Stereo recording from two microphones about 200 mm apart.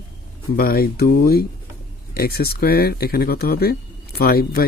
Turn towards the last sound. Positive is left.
turn(degrees=50)  # may be behind; listen again after turning